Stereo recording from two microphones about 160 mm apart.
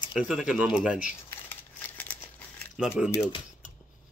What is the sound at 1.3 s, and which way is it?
Crumpling, 10° left (ahead or behind).